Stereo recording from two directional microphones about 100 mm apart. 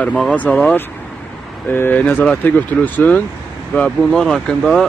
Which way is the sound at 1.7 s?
20° left (ahead or behind).